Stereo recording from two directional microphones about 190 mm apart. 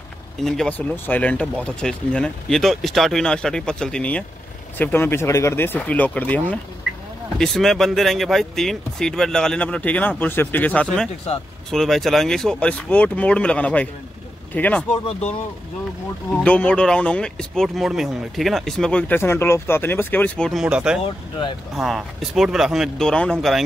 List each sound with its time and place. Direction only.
0.4 s speech: centre (ahead or behind)
14.9 s speech: 30° left (ahead or behind)
16.4 s speech: 5° left (ahead or behind)
21.0 s speech: 25° left (ahead or behind)
21.7 s speech: centre (ahead or behind)